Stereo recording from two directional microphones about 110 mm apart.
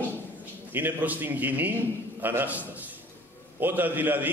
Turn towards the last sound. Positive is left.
turn(degrees=-15)  # may be behind; listen again after turning